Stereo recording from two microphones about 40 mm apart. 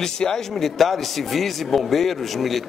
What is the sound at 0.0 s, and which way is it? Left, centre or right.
Speech, centre.